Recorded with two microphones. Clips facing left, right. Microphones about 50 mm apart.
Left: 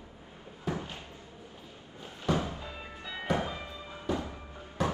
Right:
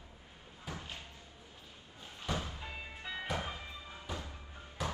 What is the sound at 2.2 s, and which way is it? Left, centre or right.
Music, left.